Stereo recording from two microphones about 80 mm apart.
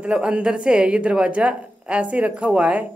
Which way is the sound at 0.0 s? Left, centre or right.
Centre.